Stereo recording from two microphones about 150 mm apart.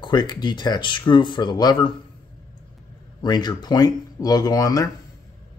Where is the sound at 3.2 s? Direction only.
30° left (ahead or behind).